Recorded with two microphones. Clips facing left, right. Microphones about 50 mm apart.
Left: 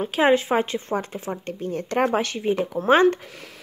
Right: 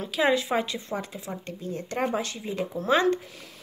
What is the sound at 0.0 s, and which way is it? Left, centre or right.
Speech, left.